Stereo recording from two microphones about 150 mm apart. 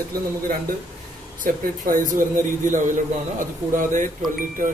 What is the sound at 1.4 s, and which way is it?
Speech, 65° right (ahead or behind).